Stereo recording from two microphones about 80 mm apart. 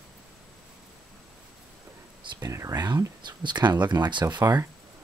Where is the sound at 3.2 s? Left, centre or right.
Right.